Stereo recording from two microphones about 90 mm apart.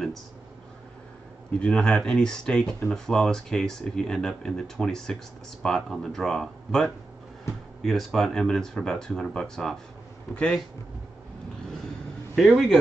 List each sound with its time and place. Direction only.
1.5 s speech: 10° left (ahead or behind)
12.4 s speech: centre (ahead or behind)